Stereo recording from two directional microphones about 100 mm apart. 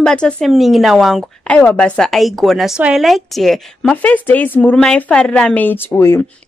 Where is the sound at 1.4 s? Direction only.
15° left (ahead or behind).